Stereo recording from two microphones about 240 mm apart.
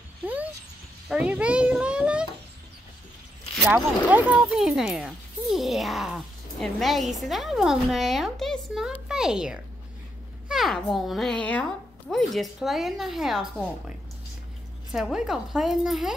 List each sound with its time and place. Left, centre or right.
1.0 s speech: centre
3.6 s a child's voice: centre